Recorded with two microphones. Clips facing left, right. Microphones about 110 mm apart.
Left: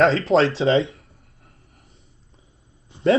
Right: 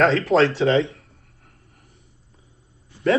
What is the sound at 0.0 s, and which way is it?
Speech, 25° left (ahead or behind).